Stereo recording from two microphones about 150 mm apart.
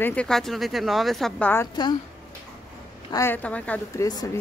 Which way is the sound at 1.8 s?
30° left (ahead or behind).